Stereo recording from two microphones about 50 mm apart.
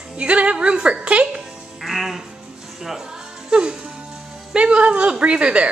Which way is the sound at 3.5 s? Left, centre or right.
Centre.